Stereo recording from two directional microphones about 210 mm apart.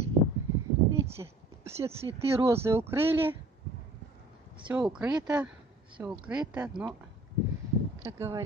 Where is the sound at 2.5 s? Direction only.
10° right (ahead or behind).